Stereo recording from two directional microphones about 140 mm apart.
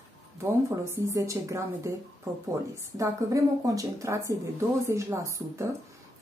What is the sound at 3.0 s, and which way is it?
Speech, 25° right (ahead or behind).